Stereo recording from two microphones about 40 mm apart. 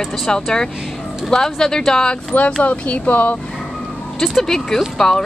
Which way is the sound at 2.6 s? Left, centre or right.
Left.